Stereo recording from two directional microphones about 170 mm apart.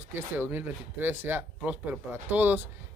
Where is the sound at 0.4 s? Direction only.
10° right (ahead or behind).